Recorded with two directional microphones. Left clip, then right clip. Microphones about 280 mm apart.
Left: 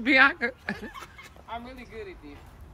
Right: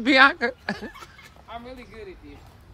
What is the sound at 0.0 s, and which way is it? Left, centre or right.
Speech, centre.